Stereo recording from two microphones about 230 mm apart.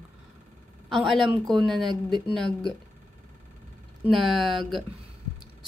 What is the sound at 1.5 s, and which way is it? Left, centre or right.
Speech, centre.